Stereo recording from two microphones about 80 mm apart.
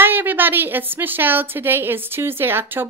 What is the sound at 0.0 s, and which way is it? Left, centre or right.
A woman's voice, right.